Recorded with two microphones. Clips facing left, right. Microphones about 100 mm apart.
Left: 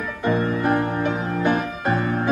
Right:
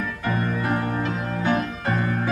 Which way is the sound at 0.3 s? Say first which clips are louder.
Left 5 dB; 20° left (ahead or behind).